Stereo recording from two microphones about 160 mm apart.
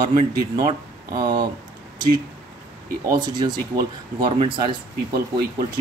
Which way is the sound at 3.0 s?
25° right (ahead or behind).